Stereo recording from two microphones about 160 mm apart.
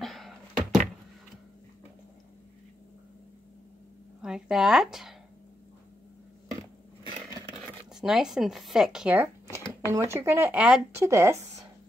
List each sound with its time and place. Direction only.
0.0 s a sound: centre (ahead or behind)
4.2 s speech: 5° right (ahead or behind)
7.9 s speech: 5° right (ahead or behind); by 11.6 s 20° right (ahead or behind)